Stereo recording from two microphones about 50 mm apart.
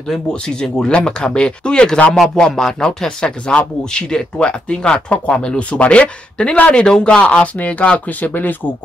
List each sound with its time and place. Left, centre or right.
0.1 s speech: centre; by 8.5 s left